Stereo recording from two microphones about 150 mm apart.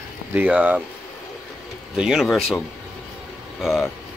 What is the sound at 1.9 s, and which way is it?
Speech, centre (ahead or behind).